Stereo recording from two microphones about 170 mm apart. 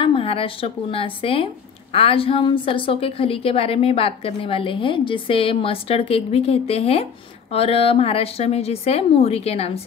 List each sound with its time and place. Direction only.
0.0 s speech: 35° left (ahead or behind)